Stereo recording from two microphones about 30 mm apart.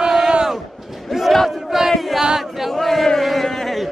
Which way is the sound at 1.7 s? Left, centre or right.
Centre.